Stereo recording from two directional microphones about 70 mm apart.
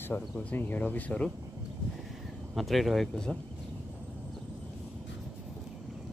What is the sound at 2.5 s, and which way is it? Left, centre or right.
Speech, centre.